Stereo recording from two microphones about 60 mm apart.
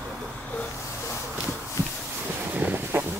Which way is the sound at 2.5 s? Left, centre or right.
Right.